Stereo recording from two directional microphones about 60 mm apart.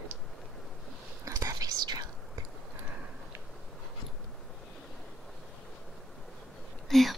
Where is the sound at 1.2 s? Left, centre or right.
Right.